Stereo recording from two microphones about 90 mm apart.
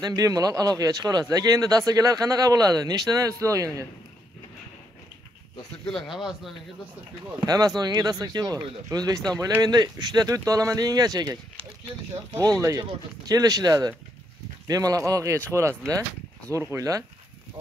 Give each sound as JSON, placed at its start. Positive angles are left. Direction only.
{"t": 0.0, "sound": "speech", "side_deg": -45}
{"t": 5.9, "sound": "speech", "side_deg": 0}
{"t": 7.4, "sound": "speech", "side_deg": -45}
{"t": 12.4, "sound": "speech", "side_deg": -35}
{"t": 16.7, "sound": "speech", "side_deg": -35}